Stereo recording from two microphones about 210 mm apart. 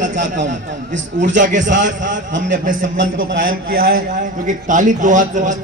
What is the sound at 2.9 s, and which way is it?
Speech, 65° right (ahead or behind).